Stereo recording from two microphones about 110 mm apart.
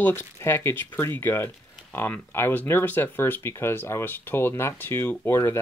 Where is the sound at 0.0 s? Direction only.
20° left (ahead or behind).